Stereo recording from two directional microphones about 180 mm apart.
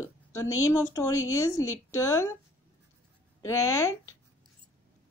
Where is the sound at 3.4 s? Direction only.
15° left (ahead or behind).